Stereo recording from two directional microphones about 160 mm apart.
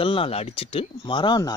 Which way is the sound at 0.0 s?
35° left (ahead or behind).